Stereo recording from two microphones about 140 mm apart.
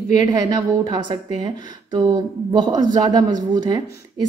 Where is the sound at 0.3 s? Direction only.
30° right (ahead or behind).